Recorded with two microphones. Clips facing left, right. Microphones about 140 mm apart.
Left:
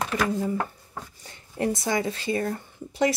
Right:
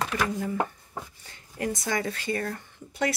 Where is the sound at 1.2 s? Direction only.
30° left (ahead or behind).